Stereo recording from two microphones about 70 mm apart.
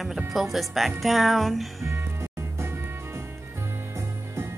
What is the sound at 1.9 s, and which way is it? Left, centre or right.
Music, right.